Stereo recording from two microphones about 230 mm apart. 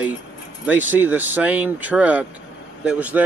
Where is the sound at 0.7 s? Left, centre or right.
Centre.